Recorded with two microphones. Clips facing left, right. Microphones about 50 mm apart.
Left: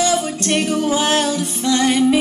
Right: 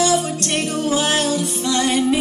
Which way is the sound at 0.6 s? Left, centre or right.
Centre.